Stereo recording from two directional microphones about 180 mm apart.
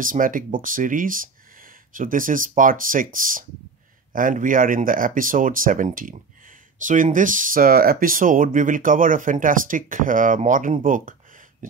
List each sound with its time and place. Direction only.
0.0 s speech: 50° right (ahead or behind)